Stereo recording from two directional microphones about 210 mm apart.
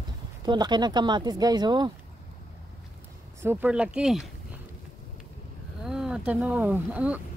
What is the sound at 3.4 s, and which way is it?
Speech, 10° right (ahead or behind).